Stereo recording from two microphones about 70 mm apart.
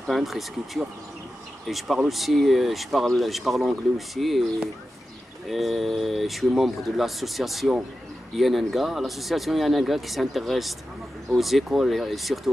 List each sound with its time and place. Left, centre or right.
0.0 s speech: centre